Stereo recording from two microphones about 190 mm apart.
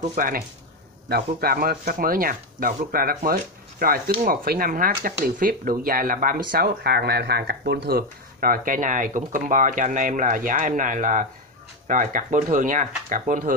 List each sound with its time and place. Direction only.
0.0 s speech: 45° right (ahead or behind)
1.0 s speech: 55° right (ahead or behind)